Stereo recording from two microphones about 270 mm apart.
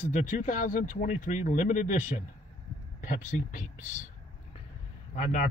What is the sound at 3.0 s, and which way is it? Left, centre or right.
Speech, left.